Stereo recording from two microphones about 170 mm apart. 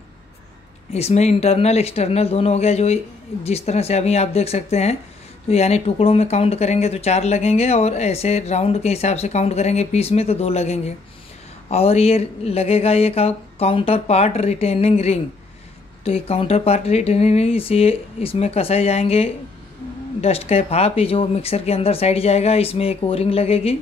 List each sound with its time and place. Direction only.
0.9 s speech: 40° left (ahead or behind)